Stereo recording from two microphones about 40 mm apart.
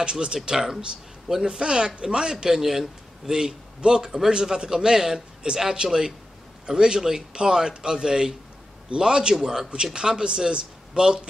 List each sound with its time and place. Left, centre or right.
0.0 s a man's voice: right